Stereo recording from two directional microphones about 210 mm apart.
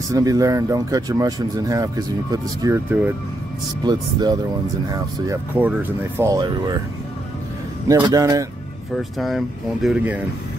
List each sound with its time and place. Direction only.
0.1 s speech: 15° right (ahead or behind)
7.9 s speech: 15° right (ahead or behind)
8.9 s speech: centre (ahead or behind)